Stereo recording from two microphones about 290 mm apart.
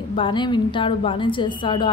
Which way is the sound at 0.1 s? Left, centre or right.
Centre.